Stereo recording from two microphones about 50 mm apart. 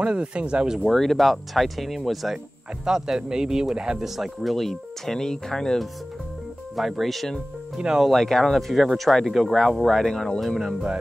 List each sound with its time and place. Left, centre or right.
0.0 s speech: right
0.9 s speech: centre
6.7 s speech: centre
7.7 s speech: centre
8.1 s speech: centre
10.6 s speech: centre